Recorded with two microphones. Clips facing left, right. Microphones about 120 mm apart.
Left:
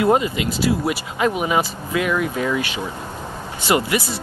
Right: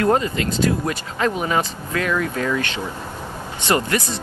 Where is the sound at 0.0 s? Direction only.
15° left (ahead or behind).